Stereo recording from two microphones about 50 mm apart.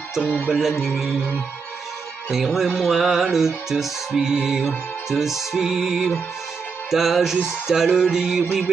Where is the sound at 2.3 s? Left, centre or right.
Centre.